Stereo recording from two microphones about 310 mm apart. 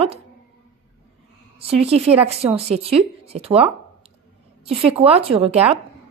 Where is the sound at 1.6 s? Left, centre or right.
Centre.